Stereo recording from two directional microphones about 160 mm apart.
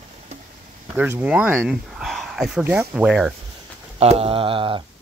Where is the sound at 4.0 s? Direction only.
40° right (ahead or behind).